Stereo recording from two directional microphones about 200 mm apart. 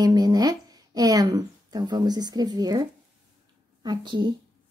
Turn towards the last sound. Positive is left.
turn(degrees=-25)  # may be behind; listen again after turning